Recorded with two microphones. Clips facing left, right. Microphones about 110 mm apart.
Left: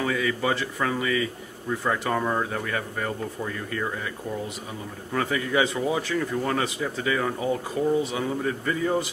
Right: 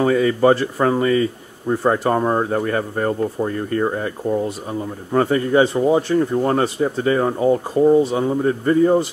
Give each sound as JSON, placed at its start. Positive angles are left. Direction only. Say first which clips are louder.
{"t": 0.0, "sound": "speech", "louder": "right 10 dB", "side_deg": -40}